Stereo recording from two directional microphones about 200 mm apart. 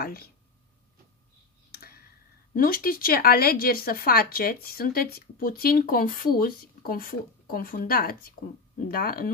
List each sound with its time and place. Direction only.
0.0 s a sound: 50° left (ahead or behind)
1.7 s tick-tock: 50° left (ahead or behind)
2.5 s speech: 45° left (ahead or behind)